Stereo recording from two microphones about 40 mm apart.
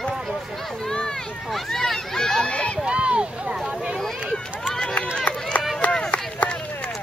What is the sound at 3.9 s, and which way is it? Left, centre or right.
Speech, centre.